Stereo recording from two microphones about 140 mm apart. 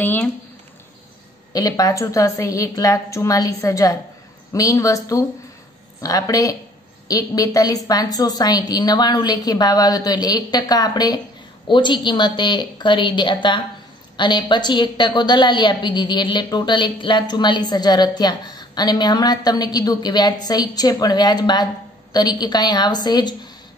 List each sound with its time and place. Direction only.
0.0 s speech: 15° left (ahead or behind)
1.5 s a woman's voice: 25° left (ahead or behind)